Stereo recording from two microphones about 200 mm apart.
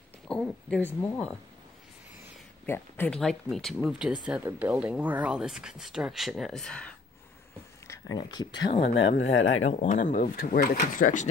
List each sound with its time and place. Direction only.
0.3 s speech: 5° left (ahead or behind)
2.6 s speech: 10° left (ahead or behind)
7.8 s speech: 15° left (ahead or behind)
8.9 s speech: 65° left (ahead or behind)
9.7 s speech: 40° left (ahead or behind)